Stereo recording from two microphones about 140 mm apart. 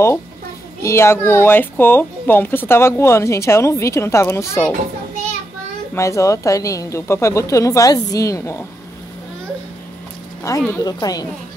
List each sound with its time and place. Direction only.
0.8 s speech: 20° left (ahead or behind)
5.9 s speech: 20° left (ahead or behind)
10.7 s speech: 25° left (ahead or behind)